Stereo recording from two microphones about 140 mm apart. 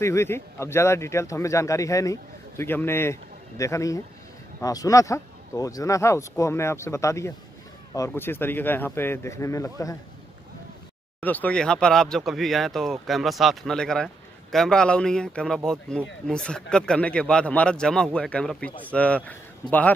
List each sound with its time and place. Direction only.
0.0 s speech: 20° left (ahead or behind)
11.1 s speech: 10° left (ahead or behind)